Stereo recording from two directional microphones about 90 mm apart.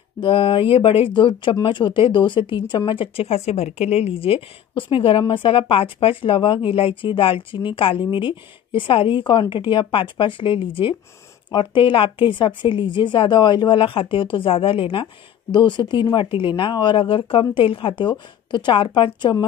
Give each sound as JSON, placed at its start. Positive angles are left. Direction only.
{"t": 0.2, "sound": "speech", "side_deg": 75}
{"t": 2.9, "sound": "speech", "side_deg": 80}
{"t": 15.5, "sound": "speech", "side_deg": 55}